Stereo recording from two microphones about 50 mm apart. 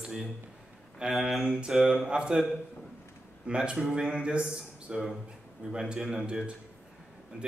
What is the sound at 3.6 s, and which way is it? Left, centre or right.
Speech, centre.